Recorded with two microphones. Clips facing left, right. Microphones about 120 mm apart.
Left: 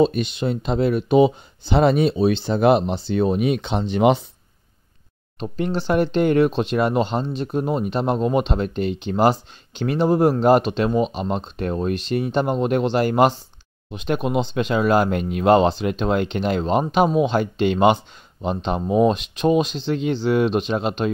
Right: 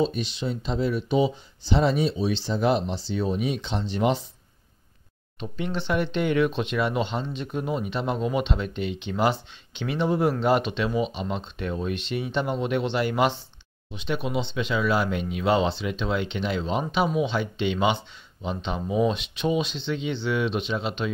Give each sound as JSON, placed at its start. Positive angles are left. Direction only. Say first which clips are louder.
{"t": 0.0, "sound": "speech", "louder": "left 7 dB", "side_deg": 60}
{"t": 5.4, "sound": "speech", "louder": "left 6 dB", "side_deg": 40}